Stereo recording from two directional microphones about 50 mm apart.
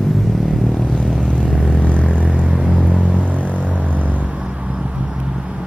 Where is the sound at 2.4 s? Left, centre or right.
Right.